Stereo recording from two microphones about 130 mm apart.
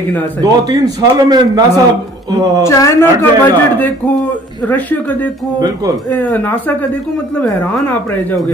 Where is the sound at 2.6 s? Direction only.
25° left (ahead or behind).